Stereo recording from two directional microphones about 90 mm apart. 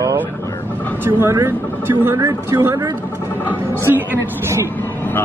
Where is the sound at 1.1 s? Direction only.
30° right (ahead or behind).